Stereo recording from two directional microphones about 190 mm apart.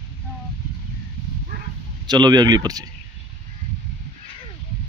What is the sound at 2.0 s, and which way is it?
Speech, 20° right (ahead or behind).